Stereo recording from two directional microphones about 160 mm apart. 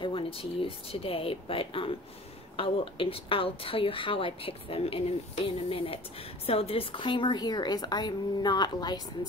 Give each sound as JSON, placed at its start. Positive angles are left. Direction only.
{"t": 0.0, "sound": "a woman's voice", "side_deg": 35}